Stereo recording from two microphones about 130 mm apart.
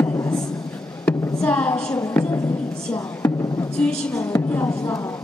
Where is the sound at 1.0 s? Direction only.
10° left (ahead or behind).